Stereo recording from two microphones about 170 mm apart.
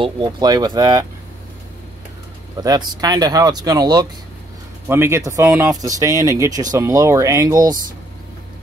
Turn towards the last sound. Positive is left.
turn(degrees=-20)  # may be behind; listen again after turning